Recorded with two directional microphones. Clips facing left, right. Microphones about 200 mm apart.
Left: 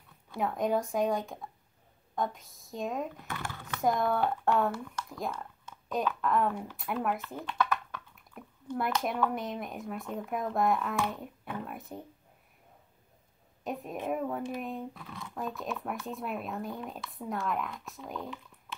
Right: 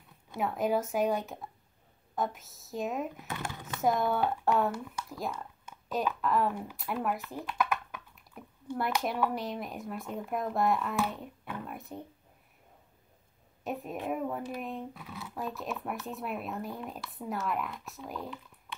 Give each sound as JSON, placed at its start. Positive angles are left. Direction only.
{"t": 0.4, "sound": "speech", "side_deg": -5}
{"t": 3.3, "sound": "a sound", "side_deg": -20}
{"t": 3.6, "sound": "speech", "side_deg": 0}
{"t": 7.5, "sound": "a sound", "side_deg": -10}
{"t": 9.0, "sound": "speech", "side_deg": 0}
{"t": 13.7, "sound": "speech", "side_deg": 0}